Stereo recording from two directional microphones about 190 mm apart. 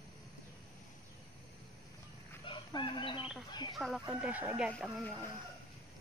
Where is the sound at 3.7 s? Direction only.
Centre (ahead or behind).